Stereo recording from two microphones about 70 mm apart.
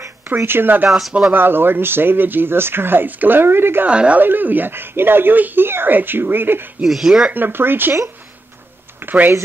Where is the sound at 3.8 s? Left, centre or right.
Centre.